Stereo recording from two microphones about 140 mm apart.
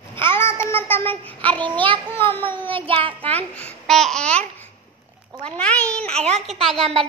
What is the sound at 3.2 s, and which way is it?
Speech, 10° left (ahead or behind).